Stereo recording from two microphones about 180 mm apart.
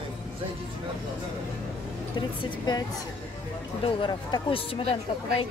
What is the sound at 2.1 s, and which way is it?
Speech, 25° left (ahead or behind).